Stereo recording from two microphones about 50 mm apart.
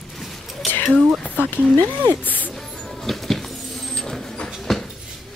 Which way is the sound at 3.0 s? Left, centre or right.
Centre.